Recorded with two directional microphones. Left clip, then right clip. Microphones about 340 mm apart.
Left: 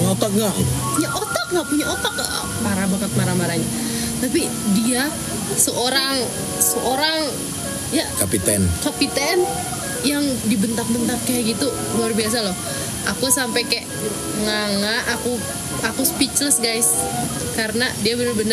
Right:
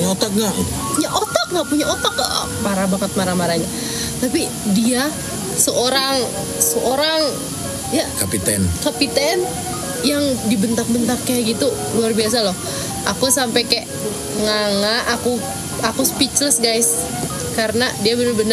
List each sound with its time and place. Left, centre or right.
0.0 s music: centre
1.1 s speech: centre
8.3 s speech: centre